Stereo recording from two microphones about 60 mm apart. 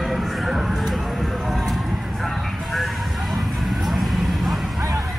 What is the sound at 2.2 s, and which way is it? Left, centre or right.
Vehicle, centre.